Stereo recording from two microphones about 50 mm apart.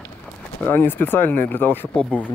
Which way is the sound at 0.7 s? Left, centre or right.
Left.